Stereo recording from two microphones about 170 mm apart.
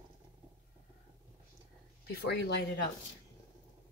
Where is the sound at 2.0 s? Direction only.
75° left (ahead or behind).